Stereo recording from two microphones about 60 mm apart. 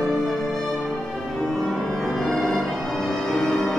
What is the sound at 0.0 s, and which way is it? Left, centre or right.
Music, centre.